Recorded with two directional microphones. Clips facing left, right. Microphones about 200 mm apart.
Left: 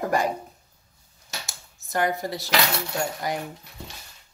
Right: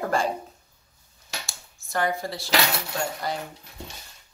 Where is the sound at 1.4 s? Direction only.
20° left (ahead or behind).